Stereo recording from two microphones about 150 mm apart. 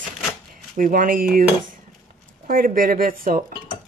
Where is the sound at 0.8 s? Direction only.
65° right (ahead or behind).